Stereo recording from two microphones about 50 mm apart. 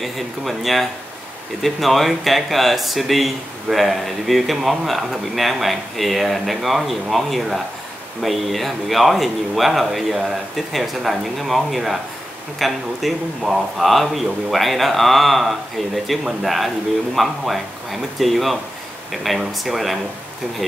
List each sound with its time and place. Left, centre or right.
0.0 s speech: centre